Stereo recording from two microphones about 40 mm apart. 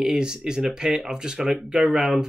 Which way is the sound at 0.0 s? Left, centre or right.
Centre.